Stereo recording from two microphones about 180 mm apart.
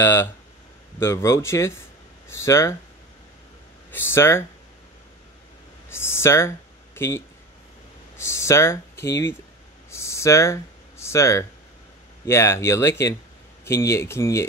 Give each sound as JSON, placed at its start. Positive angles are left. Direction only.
{"t": 0.0, "sound": "speech", "side_deg": 15}
{"t": 3.9, "sound": "speech", "side_deg": 15}
{"t": 5.9, "sound": "speech", "side_deg": 15}
{"t": 9.8, "sound": "a sound", "side_deg": 15}
{"t": 12.3, "sound": "speech", "side_deg": 15}